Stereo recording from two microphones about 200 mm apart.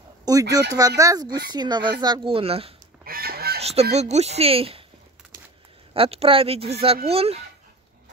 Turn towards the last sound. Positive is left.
turn(degrees=-30)  # may be behind; listen again after turning